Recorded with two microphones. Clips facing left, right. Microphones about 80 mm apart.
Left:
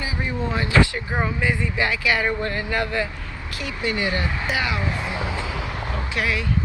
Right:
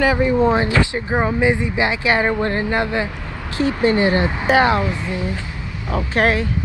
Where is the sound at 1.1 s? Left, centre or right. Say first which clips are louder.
Right 9 dB; centre.